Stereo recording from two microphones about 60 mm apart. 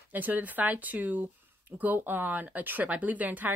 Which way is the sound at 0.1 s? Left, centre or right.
Right.